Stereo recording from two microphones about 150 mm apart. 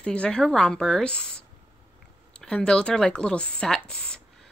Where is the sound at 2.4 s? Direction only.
5° left (ahead or behind).